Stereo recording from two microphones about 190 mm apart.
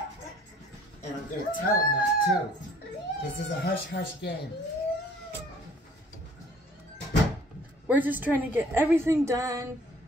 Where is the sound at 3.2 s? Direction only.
60° left (ahead or behind).